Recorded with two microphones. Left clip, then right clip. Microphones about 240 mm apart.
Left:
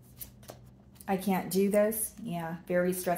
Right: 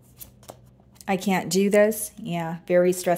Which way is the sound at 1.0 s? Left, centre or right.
Right.